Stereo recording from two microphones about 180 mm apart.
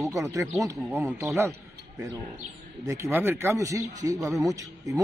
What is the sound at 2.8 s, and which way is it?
A man's voice, 15° right (ahead or behind).